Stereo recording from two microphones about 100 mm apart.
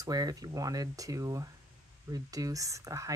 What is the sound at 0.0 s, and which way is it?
Speech, 40° right (ahead or behind).